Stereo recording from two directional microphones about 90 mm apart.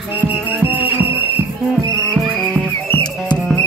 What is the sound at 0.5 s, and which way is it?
Music, 20° right (ahead or behind).